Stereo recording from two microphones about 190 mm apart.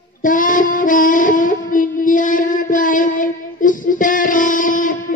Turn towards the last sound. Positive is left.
turn(degrees=45)  # may be behind; listen again after turning